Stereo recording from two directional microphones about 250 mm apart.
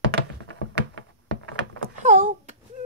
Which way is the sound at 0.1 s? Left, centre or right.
Right.